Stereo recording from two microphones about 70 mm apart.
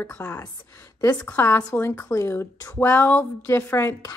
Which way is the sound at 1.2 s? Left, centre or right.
Left.